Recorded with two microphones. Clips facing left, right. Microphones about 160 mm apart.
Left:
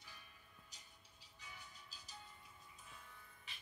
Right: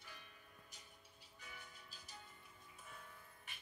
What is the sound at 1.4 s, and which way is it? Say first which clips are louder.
Music: even; 55° right (ahead or behind).